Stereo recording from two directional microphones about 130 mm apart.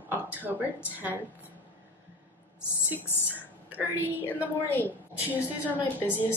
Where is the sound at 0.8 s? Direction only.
15° right (ahead or behind).